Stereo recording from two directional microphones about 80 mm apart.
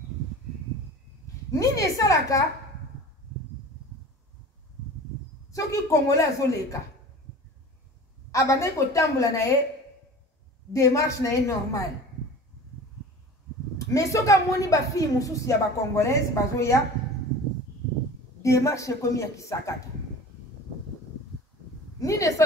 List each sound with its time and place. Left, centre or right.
1.5 s a woman's voice: left
5.5 s a woman's voice: left
8.3 s a woman's voice: left
10.7 s a woman's voice: left
13.7 s a woman's voice: left
18.4 s a woman's voice: left
22.0 s a woman's voice: left